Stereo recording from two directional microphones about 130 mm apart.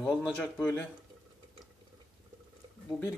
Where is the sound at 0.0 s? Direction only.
10° left (ahead or behind).